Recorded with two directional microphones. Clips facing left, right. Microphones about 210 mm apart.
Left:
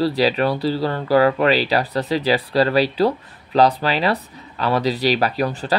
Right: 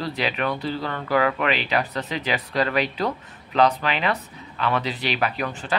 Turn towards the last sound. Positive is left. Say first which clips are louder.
# left 6 dB
turn(degrees=35)  # may be behind; listen again after turning